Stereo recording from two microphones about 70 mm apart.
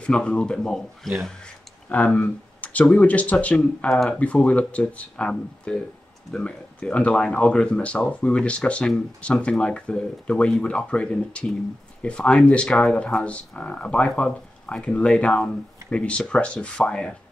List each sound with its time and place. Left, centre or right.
0.0 s speech: centre
1.9 s speech: left